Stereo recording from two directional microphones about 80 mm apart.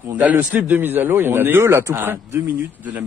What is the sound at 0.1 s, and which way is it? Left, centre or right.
A man's voice, right.